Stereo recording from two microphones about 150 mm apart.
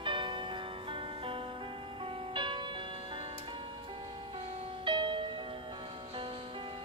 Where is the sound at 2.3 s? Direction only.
30° right (ahead or behind).